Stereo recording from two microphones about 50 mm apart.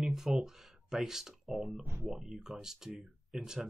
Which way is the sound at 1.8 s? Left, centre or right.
Right.